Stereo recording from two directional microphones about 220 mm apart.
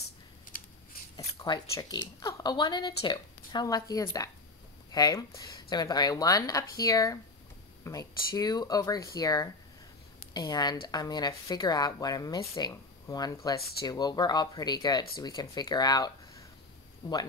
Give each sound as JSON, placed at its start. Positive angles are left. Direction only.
{"t": 1.1, "sound": "speech", "side_deg": 20}